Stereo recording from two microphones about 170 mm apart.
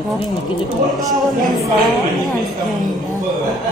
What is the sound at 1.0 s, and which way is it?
Speech, centre (ahead or behind).